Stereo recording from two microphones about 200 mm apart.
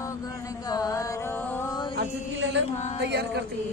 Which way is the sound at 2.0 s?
65° right (ahead or behind).